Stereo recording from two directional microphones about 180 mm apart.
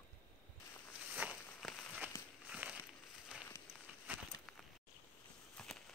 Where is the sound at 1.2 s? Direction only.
10° right (ahead or behind).